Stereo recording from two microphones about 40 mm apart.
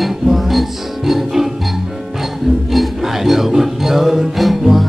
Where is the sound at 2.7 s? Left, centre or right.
Centre.